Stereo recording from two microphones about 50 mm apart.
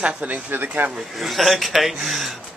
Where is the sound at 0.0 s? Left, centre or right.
Right.